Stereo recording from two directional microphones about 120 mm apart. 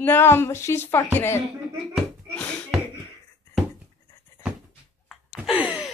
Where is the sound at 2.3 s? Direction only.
10° left (ahead or behind).